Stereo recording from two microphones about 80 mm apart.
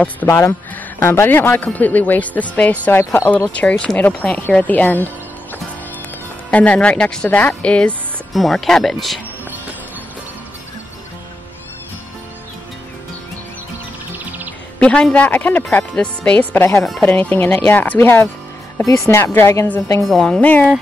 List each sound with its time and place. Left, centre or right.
0.3 s a man's voice: left
3.0 s speech: left
3.5 s speech: centre
6.5 s speech: centre
8.3 s speech: centre
14.8 s a man's voice: centre
16.7 s speech: centre
17.0 s a man's voice: left
18.9 s speech: left
20.1 s speech: centre